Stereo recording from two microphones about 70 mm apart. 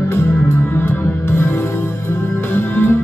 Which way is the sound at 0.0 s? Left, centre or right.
Left.